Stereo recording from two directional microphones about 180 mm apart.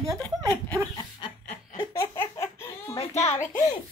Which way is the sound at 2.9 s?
35° left (ahead or behind).